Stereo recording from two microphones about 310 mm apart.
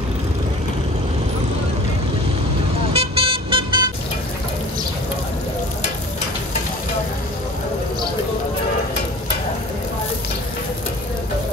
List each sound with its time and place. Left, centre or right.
2.9 s vehicle: centre